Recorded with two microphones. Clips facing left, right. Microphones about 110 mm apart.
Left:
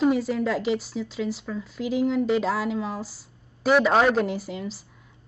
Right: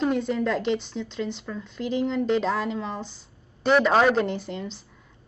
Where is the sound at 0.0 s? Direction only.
5° left (ahead or behind).